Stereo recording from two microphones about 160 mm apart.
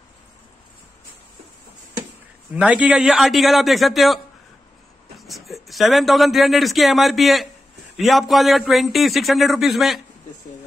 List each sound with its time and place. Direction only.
2.5 s a man's voice: 5° right (ahead or behind)
5.2 s a man's voice: centre (ahead or behind)